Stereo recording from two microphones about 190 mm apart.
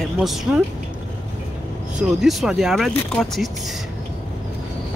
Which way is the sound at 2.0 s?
Centre (ahead or behind).